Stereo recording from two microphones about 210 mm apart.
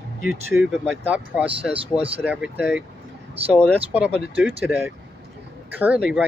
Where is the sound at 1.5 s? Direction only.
25° right (ahead or behind).